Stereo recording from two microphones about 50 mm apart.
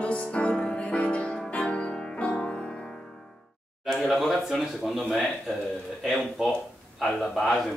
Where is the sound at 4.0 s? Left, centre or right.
Centre.